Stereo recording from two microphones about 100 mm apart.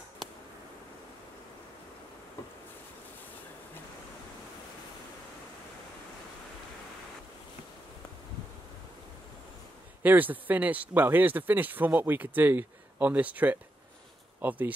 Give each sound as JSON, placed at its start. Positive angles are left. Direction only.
{"t": 10.0, "sound": "speech", "side_deg": -15}